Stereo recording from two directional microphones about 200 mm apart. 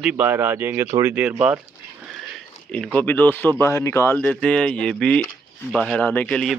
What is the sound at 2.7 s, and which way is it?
Speech, 5° left (ahead or behind).